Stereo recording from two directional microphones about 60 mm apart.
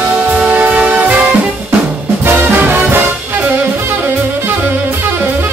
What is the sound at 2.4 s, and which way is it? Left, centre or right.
Music, right.